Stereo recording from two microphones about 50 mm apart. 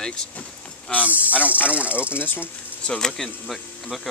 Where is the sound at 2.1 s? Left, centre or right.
Left.